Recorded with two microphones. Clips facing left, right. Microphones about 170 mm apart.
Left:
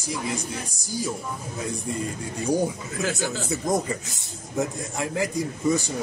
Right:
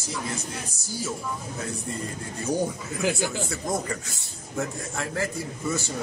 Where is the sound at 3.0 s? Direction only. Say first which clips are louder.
Right 2 dB; 15° right (ahead or behind).